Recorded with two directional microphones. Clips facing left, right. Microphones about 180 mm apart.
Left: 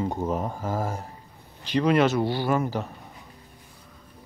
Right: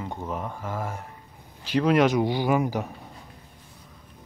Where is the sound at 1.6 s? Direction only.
10° right (ahead or behind).